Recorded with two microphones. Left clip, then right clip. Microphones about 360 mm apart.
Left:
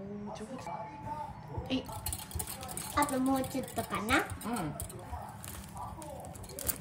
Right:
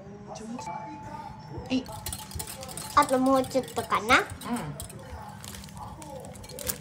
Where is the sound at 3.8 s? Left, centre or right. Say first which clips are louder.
Right 8 dB; centre.